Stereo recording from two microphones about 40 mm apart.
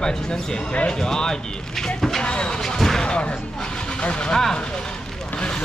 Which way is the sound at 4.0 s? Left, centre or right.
Left.